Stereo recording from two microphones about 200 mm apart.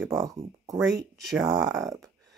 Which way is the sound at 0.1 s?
20° right (ahead or behind).